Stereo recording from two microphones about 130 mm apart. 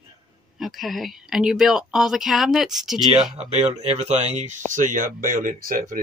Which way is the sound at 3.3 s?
55° right (ahead or behind).